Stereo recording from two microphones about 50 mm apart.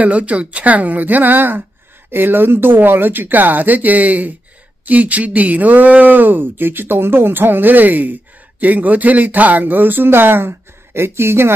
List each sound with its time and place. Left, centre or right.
0.0 s speech: right